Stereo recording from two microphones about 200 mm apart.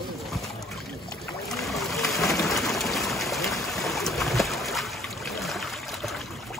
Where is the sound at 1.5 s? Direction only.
Centre (ahead or behind).